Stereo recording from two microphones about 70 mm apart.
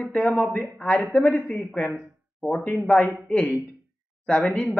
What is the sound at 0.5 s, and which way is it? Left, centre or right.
A man's voice, centre.